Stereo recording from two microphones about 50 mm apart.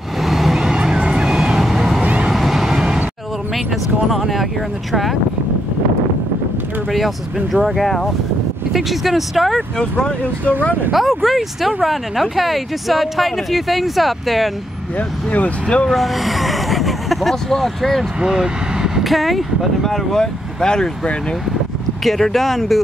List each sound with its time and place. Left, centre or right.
0.2 s vehicle: centre
0.7 s vehicle: centre
3.5 s a sound: centre
6.9 s speech: centre
9.6 s speech: centre
10.9 s speech: centre
15.0 s speech: left
15.9 s speech: centre
18.2 s vehicle: centre
19.0 s speech: centre
22.0 s speech: centre